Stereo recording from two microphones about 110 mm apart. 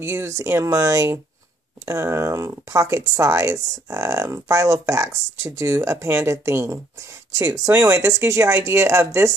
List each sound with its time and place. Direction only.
0.0 s speech: 25° right (ahead or behind)